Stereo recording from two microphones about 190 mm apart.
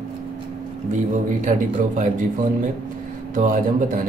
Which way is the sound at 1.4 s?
40° right (ahead or behind).